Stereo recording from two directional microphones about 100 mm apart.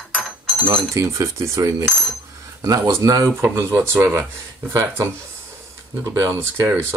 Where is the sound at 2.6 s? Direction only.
40° right (ahead or behind).